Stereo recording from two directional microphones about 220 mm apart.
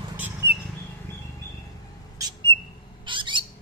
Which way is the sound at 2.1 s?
20° right (ahead or behind).